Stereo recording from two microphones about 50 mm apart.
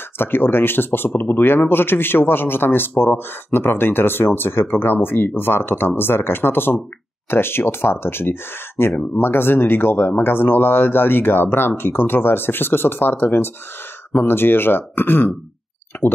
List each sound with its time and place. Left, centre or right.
0.2 s speech: left